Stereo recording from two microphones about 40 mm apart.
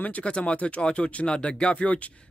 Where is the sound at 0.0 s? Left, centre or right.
Left.